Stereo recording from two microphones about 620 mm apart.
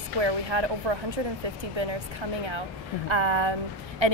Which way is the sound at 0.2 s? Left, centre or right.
Right.